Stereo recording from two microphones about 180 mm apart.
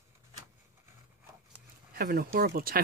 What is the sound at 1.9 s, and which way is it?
Speech, 55° right (ahead or behind).